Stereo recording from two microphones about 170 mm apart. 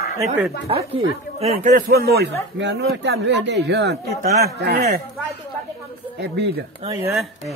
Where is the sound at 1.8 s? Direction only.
65° right (ahead or behind).